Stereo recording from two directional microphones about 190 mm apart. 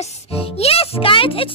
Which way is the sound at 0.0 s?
30° left (ahead or behind).